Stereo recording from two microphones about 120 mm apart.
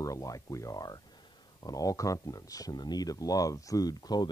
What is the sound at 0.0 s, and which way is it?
Speech, 30° left (ahead or behind).